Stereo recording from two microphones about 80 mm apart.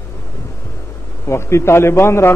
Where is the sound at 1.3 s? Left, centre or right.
Left.